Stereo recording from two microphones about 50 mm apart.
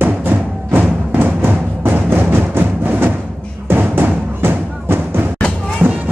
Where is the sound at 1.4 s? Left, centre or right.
Right.